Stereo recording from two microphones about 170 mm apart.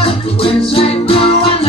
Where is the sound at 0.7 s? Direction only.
35° left (ahead or behind).